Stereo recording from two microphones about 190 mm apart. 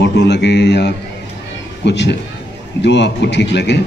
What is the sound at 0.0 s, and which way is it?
A man's voice, 65° left (ahead or behind).